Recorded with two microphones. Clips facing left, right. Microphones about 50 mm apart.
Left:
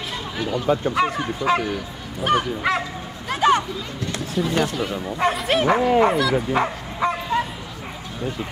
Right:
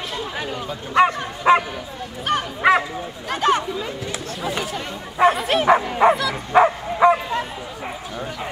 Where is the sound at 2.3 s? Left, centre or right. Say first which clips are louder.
Right 3 dB; centre.